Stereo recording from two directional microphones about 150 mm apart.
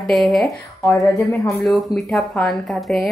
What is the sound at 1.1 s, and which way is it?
Speech, 20° left (ahead or behind).